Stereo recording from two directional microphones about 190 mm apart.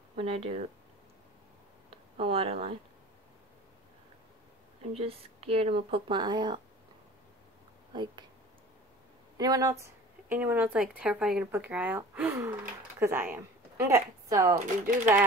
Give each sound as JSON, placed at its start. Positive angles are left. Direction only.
{"t": 0.1, "sound": "speech", "side_deg": -30}
{"t": 1.9, "sound": "speech", "side_deg": -30}
{"t": 4.9, "sound": "speech", "side_deg": -30}
{"t": 7.9, "sound": "speech", "side_deg": -25}
{"t": 9.4, "sound": "a woman's voice", "side_deg": -20}
{"t": 14.6, "sound": "speech", "side_deg": -40}